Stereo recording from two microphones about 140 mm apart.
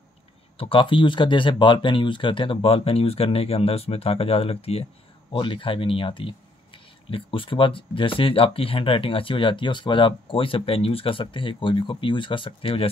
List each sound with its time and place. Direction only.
0.6 s speech: 40° left (ahead or behind)